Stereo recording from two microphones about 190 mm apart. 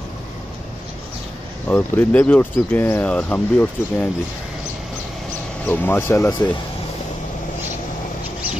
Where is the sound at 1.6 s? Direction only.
10° left (ahead or behind).